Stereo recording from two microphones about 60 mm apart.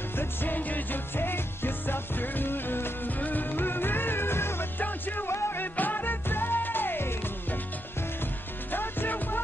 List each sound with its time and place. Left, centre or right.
0.2 s music: left
4.7 s music: left
5.3 s music: left
8.7 s music: left